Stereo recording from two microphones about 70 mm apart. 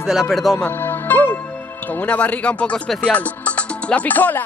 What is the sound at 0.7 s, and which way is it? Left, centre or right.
Music, left.